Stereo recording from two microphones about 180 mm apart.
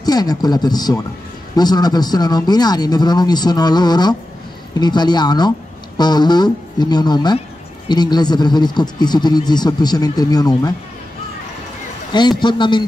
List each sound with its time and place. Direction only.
0.0 s speech: 20° left (ahead or behind)
12.1 s speech: 25° left (ahead or behind)